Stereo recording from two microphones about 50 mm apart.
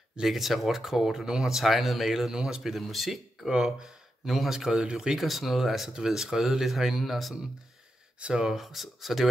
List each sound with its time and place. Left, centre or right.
0.2 s speech: centre
5.2 s speech: centre
8.2 s speech: centre
8.5 s speech: centre